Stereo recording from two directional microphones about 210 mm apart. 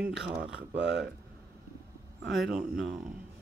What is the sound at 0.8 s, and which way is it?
Speech, 55° right (ahead or behind).